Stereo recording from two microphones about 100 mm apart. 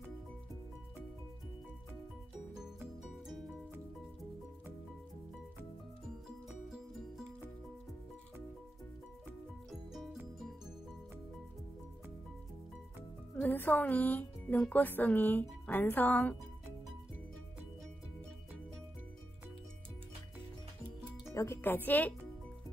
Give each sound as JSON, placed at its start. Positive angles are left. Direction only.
{"t": 3.3, "sound": "music", "side_deg": 0}
{"t": 9.7, "sound": "music", "side_deg": 0}
{"t": 13.4, "sound": "speech", "side_deg": 15}
{"t": 21.3, "sound": "speech", "side_deg": 25}